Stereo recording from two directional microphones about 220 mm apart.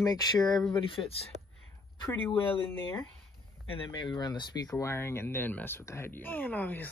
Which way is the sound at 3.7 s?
20° left (ahead or behind).